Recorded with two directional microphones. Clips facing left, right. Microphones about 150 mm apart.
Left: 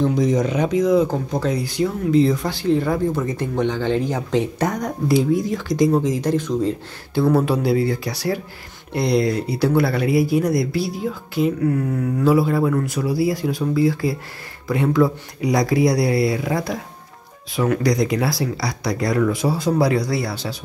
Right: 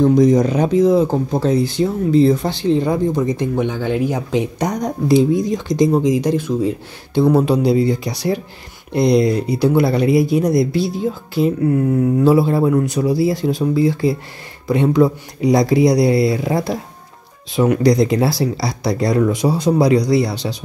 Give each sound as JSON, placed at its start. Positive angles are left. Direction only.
{"t": 0.0, "sound": "speech", "side_deg": -40}
{"t": 7.2, "sound": "speech", "side_deg": -20}